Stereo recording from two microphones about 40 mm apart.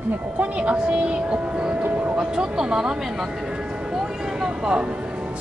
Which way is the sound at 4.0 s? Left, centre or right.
Centre.